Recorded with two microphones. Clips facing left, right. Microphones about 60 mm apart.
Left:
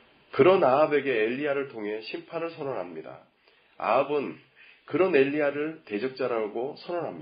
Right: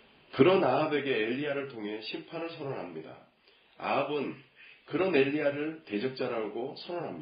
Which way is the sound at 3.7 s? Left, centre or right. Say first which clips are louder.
Left 6 dB; left.